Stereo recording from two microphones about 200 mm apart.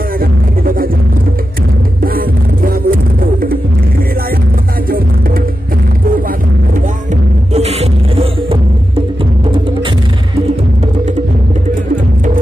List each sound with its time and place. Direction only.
2.0 s music: 45° right (ahead or behind)
4.8 s music: 45° right (ahead or behind)
7.5 s music: 30° right (ahead or behind)